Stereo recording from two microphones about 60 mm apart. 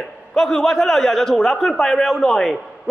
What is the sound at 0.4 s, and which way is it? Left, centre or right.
A man's voice, centre.